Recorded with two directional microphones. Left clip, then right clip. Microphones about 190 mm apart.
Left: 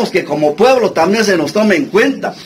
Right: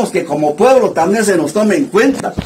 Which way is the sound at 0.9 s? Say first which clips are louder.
Left 1 dB; 15° left (ahead or behind).